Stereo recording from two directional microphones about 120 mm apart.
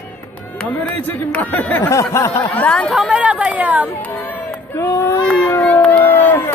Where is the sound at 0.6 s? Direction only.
10° left (ahead or behind).